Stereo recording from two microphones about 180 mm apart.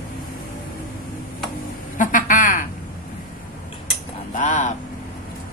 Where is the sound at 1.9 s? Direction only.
50° left (ahead or behind).